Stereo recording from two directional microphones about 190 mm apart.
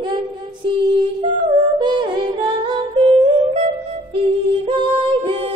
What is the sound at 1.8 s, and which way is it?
Music, 25° right (ahead or behind).